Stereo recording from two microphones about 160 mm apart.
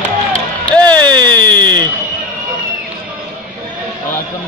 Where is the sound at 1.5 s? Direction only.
25° right (ahead or behind).